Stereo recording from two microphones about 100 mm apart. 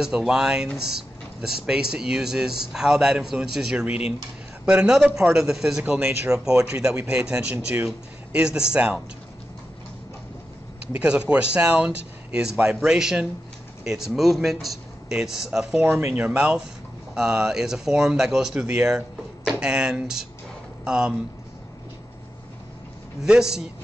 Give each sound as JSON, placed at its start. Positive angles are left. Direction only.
{"t": 0.0, "sound": "speech", "side_deg": -5}
{"t": 10.9, "sound": "speech", "side_deg": -10}
{"t": 15.8, "sound": "speech", "side_deg": -20}
{"t": 16.3, "sound": "speech", "side_deg": -10}
{"t": 23.2, "sound": "speech", "side_deg": -5}